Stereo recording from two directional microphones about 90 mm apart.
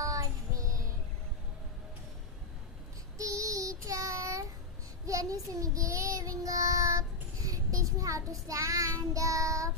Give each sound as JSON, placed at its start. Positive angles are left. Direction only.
{"t": 0.0, "sound": "child singing", "side_deg": -40}
{"t": 3.2, "sound": "child singing", "side_deg": -35}